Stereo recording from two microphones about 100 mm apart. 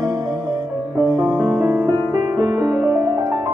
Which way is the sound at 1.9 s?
40° right (ahead or behind).